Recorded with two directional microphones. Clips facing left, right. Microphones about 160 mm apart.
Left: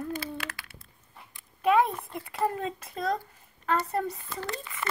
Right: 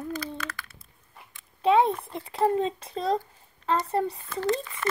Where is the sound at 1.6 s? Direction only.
30° right (ahead or behind).